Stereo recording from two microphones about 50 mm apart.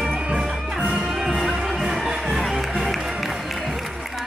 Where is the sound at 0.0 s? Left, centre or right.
Centre.